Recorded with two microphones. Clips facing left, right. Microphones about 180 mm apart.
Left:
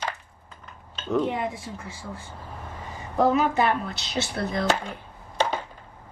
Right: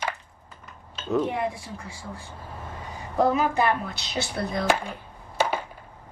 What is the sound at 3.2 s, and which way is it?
Speech, centre (ahead or behind).